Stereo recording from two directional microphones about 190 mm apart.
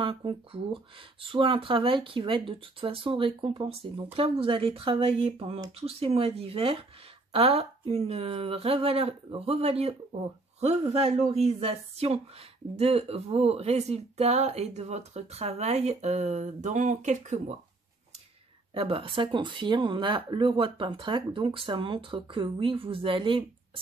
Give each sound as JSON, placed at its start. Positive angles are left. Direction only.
{"t": 0.0, "sound": "speech", "side_deg": -30}
{"t": 18.8, "sound": "speech", "side_deg": -30}